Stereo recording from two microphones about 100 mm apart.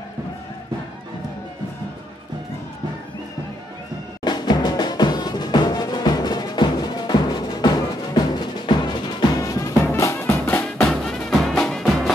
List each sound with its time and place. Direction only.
4.2 s music: 45° left (ahead or behind); by 10.3 s 30° left (ahead or behind)
10.9 s music: 5° left (ahead or behind)